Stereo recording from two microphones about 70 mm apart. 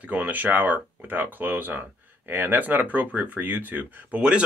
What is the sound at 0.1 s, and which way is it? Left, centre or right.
Speech, right.